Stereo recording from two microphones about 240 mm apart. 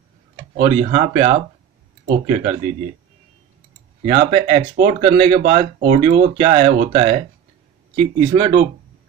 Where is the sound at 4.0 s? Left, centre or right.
Right.